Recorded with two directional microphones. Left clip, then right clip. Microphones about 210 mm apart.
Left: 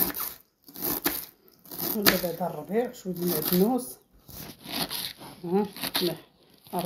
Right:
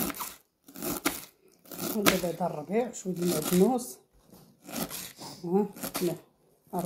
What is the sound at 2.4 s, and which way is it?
Speech, 15° right (ahead or behind).